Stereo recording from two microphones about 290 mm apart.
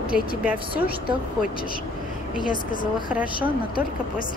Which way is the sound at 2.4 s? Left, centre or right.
Left.